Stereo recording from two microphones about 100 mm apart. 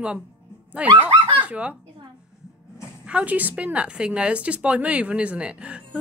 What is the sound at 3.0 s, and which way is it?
A woman's voice, 15° right (ahead or behind).